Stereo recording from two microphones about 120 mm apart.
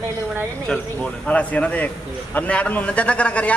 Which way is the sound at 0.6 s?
10° left (ahead or behind).